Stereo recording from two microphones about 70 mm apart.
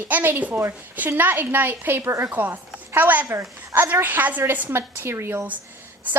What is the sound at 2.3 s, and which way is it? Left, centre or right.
A woman's voice, right.